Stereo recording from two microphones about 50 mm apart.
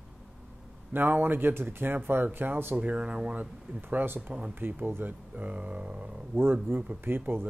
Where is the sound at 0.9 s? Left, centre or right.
Right.